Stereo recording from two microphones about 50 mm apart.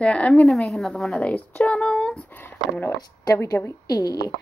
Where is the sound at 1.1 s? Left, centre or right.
Left.